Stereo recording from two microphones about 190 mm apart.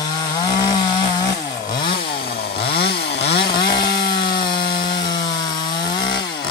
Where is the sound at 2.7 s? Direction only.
60° left (ahead or behind).